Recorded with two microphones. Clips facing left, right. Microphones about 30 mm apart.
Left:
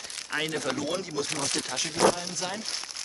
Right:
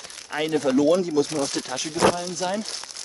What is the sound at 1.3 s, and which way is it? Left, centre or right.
Speech, left.